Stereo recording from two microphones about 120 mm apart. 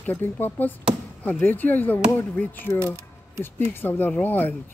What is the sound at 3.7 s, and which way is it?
Speech, 20° left (ahead or behind).